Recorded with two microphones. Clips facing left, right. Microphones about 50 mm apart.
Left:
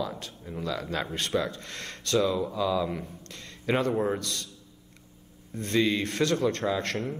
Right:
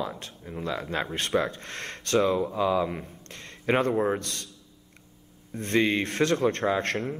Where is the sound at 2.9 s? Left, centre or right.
Right.